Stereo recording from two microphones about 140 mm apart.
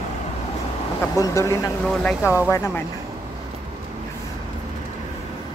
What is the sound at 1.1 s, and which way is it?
Speech, 25° left (ahead or behind).